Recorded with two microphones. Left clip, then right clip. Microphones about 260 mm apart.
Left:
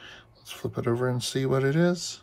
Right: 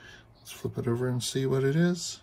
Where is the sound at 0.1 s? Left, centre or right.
Centre.